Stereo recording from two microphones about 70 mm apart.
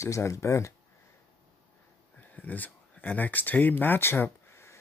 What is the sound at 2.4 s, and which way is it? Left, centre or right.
Speech, left.